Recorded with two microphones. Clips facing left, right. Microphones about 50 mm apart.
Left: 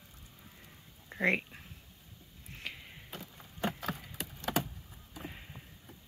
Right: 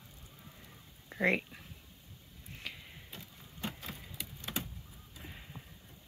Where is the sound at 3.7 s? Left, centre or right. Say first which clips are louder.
Left 6 dB; left.